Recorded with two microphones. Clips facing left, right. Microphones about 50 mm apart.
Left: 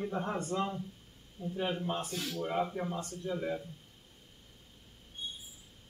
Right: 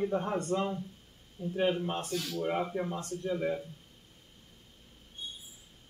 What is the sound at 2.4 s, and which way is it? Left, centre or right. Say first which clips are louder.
Speech: right 1 dB; centre.